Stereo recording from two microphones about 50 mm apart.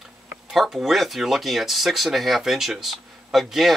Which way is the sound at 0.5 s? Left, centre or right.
Centre.